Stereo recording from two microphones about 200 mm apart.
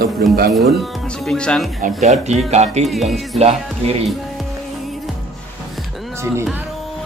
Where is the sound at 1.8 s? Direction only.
35° right (ahead or behind).